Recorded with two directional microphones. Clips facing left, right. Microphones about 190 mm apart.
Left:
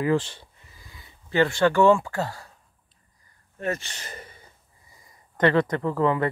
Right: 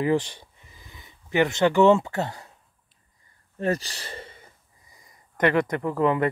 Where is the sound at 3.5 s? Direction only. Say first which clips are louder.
Right 3 dB; 35° right (ahead or behind).